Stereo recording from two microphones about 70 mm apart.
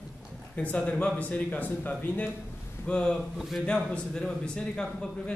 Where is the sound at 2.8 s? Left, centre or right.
Centre.